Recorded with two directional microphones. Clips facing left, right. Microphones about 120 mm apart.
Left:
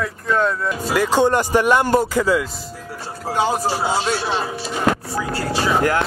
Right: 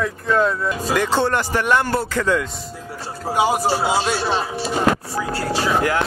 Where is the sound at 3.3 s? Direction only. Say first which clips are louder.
Right 2 dB; 10° right (ahead or behind).